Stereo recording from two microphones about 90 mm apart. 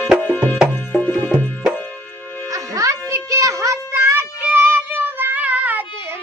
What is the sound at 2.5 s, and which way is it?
Music, 35° right (ahead or behind).